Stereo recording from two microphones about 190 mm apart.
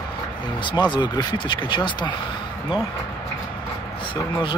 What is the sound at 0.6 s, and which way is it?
Speech, 25° left (ahead or behind).